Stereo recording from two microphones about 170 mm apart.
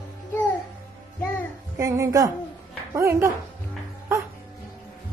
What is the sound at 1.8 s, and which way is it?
A woman's voice, 20° right (ahead or behind).